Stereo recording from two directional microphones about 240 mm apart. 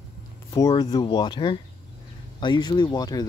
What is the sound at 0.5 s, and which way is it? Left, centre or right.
Speech, centre.